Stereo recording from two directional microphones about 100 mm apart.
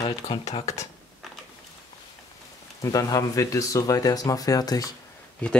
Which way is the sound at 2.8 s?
35° left (ahead or behind).